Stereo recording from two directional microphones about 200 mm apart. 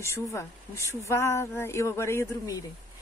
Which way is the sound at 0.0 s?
15° left (ahead or behind).